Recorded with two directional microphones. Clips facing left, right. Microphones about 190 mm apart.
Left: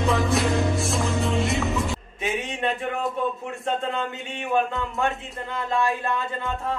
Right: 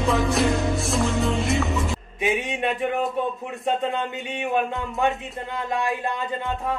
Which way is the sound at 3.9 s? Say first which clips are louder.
Right 2 dB; 20° right (ahead or behind).